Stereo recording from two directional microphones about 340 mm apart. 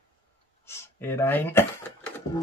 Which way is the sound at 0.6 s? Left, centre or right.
Centre.